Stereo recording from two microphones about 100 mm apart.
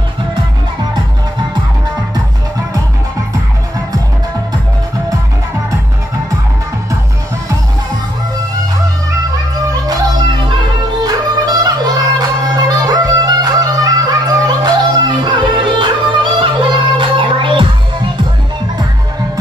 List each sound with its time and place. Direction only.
9.7 s music: 45° right (ahead or behind)